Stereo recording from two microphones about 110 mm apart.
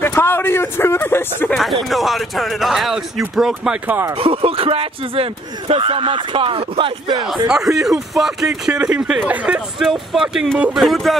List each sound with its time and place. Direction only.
0.0 s speech: 20° left (ahead or behind)
1.5 s speech: centre (ahead or behind)
3.8 s speech: 15° right (ahead or behind)
4.1 s speech: 55° right (ahead or behind)
7.4 s speech: 5° right (ahead or behind)